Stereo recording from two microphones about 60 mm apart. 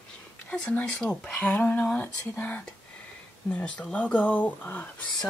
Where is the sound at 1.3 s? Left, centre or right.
Left.